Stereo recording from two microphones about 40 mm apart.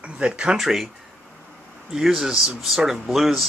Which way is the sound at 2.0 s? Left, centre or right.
Centre.